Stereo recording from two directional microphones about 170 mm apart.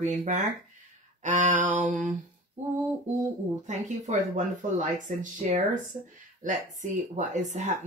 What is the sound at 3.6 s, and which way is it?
Speech, 45° right (ahead or behind).